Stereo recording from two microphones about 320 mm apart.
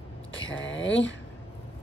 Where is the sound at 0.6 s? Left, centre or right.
Left.